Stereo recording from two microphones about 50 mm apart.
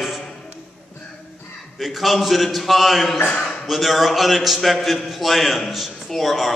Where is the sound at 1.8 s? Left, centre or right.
Centre.